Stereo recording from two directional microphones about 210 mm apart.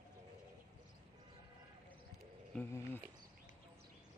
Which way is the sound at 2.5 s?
10° left (ahead or behind).